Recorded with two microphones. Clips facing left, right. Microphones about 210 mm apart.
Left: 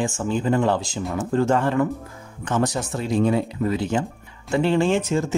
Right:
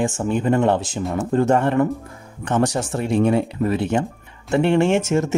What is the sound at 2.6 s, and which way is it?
Speech, 65° right (ahead or behind).